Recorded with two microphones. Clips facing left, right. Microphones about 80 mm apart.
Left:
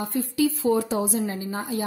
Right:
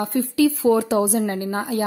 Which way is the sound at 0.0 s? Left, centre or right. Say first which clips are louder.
Right 5 dB; right.